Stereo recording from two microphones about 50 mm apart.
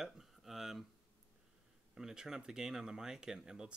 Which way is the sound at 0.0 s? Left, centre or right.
Centre.